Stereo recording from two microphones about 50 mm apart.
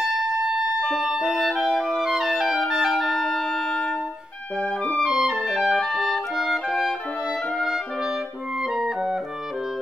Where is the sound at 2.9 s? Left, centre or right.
Centre.